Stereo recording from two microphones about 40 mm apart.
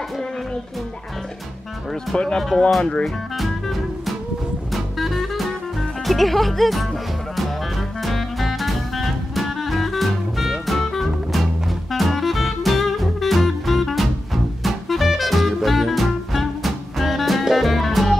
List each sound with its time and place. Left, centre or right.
2.1 s speech: centre
3.3 s music: centre